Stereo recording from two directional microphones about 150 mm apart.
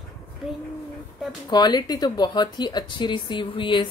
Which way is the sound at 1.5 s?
30° left (ahead or behind).